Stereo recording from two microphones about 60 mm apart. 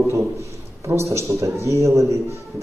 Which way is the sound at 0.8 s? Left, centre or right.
Right.